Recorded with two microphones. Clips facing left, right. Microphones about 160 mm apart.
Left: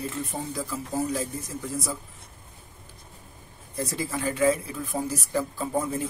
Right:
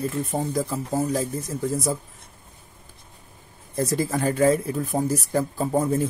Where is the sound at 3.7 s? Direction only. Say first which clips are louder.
Right 6 dB; 45° right (ahead or behind).